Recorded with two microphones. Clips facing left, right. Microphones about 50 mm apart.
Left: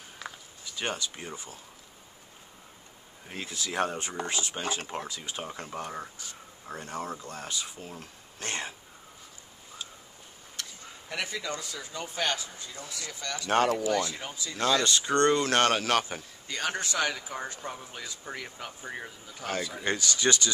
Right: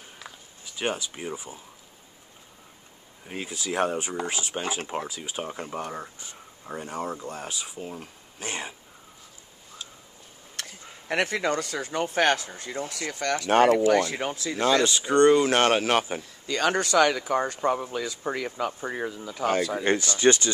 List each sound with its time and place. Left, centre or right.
0.2 s a sound: centre
0.7 s speech: centre
3.3 s speech: centre
11.1 s speech: right
14.6 s speech: right
16.4 s speech: right
18.1 s speech: right
19.4 s speech: right
19.8 s speech: right